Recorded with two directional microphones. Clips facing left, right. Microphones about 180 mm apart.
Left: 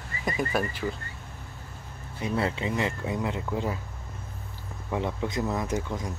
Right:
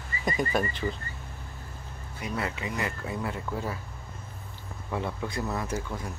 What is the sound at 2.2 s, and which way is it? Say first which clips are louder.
Speech: left 5 dB; 30° left (ahead or behind).